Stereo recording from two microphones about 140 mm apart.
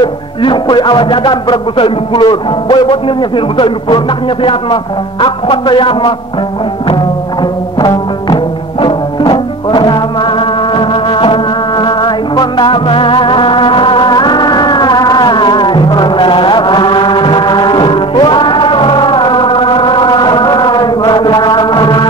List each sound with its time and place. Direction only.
0.0 s speech: 35° left (ahead or behind)
7.8 s music: 25° left (ahead or behind)